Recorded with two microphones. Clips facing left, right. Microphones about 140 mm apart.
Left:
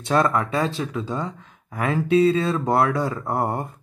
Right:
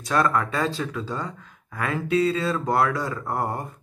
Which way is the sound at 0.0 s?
25° left (ahead or behind).